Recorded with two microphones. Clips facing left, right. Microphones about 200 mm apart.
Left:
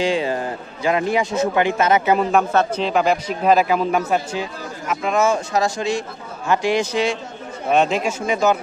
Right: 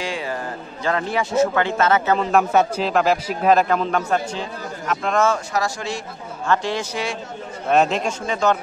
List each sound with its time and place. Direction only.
0.0 s a man's voice: 20° left (ahead or behind)
2.5 s speech: 10° right (ahead or behind)
2.9 s a man's voice: centre (ahead or behind)
5.5 s a man's voice: 20° left (ahead or behind)
7.7 s a man's voice: centre (ahead or behind)